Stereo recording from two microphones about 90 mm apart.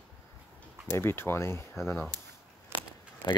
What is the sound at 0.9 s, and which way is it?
Speech, 25° left (ahead or behind).